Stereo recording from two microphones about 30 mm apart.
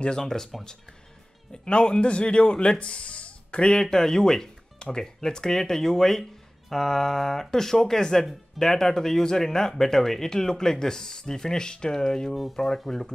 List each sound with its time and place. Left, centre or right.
0.0 s speech: left
0.5 s speech: centre
1.5 s speech: left
3.7 s speech: centre